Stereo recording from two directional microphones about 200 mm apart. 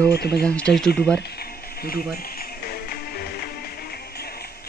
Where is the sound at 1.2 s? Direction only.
50° left (ahead or behind).